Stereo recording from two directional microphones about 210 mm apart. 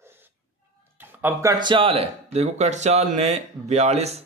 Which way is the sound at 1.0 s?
10° right (ahead or behind).